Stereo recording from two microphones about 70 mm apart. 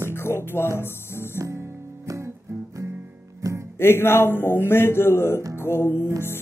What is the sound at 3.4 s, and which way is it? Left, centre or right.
Music, right.